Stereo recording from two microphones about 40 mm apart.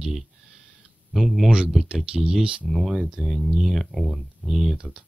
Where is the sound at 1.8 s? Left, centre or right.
Centre.